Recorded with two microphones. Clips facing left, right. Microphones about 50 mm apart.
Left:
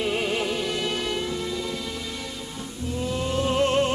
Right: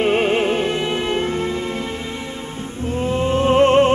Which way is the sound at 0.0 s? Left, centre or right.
Right.